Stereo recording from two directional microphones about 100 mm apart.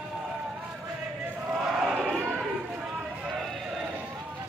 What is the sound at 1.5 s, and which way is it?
Battle cry, 5° right (ahead or behind).